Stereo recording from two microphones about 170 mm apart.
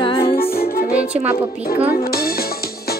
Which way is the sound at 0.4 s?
60° left (ahead or behind).